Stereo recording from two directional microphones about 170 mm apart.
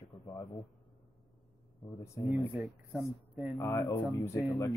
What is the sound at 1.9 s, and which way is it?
Speech, 20° left (ahead or behind).